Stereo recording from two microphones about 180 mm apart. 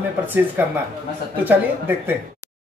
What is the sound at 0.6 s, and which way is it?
Speech, 10° right (ahead or behind).